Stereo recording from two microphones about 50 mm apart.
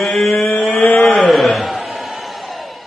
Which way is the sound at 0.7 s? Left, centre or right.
Left.